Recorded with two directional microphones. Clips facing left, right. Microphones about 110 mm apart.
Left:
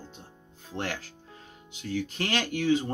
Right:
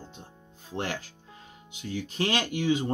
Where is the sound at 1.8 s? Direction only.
15° right (ahead or behind).